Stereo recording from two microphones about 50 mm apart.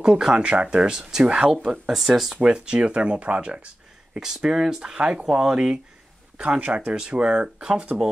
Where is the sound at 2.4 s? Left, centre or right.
Right.